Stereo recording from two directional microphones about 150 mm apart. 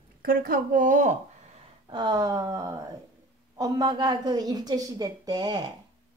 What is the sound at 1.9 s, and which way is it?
Speech, 30° right (ahead or behind).